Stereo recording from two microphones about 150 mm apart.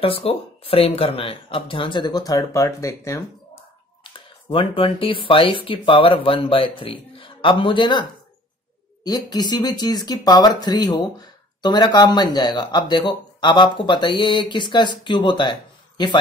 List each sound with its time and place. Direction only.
0.0 s speech: 40° left (ahead or behind); by 3.3 s 20° left (ahead or behind)
4.0 s speech: 35° left (ahead or behind)